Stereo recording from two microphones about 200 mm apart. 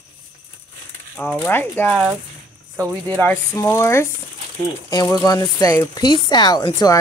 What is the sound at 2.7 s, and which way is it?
Speech, 10° right (ahead or behind).